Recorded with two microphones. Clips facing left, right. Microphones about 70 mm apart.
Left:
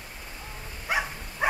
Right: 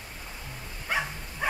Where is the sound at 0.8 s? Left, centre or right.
Centre.